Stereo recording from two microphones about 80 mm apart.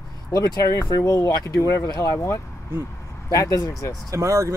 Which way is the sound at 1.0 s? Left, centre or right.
Left.